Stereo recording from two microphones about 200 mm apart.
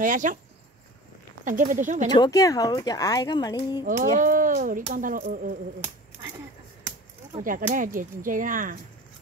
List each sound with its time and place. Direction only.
0.0 s speech: 40° right (ahead or behind)
1.4 s speech: 40° right (ahead or behind)
2.1 s speech: 20° left (ahead or behind)
3.8 s speech: 40° right (ahead or behind)
7.4 s speech: 45° right (ahead or behind)